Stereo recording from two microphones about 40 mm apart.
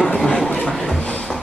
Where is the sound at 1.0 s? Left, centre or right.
Left.